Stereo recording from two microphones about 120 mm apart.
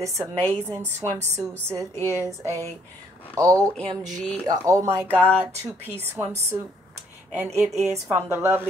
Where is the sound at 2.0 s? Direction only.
25° left (ahead or behind).